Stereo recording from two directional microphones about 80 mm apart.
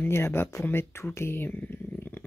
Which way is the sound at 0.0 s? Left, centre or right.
Left.